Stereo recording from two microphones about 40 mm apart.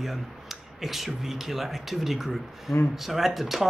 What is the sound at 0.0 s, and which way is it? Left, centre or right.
Speech, centre.